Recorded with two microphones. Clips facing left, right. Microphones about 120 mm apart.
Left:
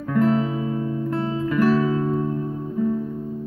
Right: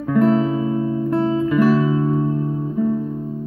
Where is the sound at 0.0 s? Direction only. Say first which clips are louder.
Right 4 dB; 10° right (ahead or behind).